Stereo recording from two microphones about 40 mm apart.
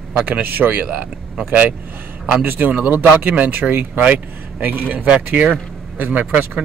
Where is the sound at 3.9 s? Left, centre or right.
Right.